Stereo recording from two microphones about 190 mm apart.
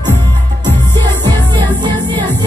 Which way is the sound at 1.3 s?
25° right (ahead or behind).